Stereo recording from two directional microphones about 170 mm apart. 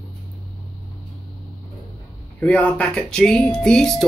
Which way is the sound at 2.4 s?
10° left (ahead or behind).